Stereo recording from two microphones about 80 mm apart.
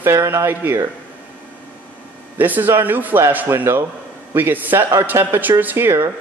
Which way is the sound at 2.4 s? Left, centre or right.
Right.